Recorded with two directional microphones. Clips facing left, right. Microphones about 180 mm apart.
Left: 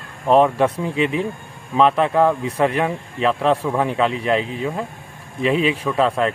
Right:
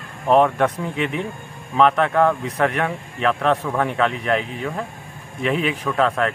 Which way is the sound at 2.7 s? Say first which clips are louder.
Left 3 dB; 30° left (ahead or behind).